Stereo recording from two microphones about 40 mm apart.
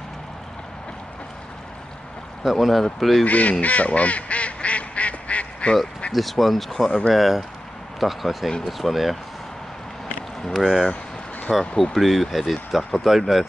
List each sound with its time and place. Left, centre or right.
2.4 s speech: centre
3.3 s speech: left
3.6 s duck: left
6.1 s speech: centre
10.6 s speech: centre
11.7 s speech: centre
12.0 s speech: centre